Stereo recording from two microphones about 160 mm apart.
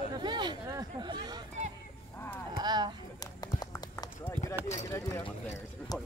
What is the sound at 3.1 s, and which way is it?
Run, 25° left (ahead or behind).